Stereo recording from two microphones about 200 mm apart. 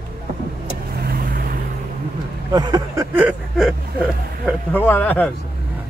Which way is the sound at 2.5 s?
20° right (ahead or behind).